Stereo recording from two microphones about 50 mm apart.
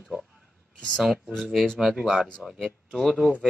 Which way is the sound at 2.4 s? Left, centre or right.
Right.